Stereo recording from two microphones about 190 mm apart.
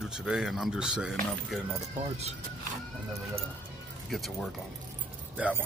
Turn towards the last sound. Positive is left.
turn(degrees=-5)  # may be behind; listen again after turning